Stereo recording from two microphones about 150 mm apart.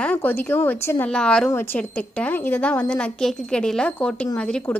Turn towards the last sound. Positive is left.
turn(degrees=10)  # may be behind; listen again after turning